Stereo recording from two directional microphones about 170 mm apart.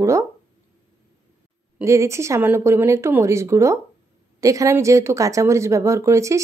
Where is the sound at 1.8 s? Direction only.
15° right (ahead or behind).